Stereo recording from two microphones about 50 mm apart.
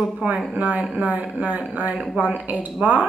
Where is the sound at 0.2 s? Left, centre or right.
Right.